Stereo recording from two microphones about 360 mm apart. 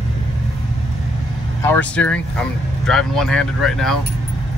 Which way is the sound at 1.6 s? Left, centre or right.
Centre.